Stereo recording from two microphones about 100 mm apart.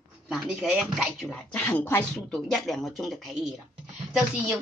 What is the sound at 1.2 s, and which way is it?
Speech, 15° left (ahead or behind).